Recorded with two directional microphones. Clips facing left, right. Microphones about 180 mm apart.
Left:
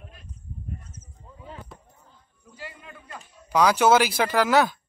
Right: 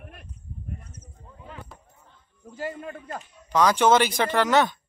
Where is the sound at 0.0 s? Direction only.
60° right (ahead or behind).